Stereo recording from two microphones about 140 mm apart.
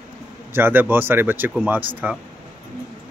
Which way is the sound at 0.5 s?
15° right (ahead or behind).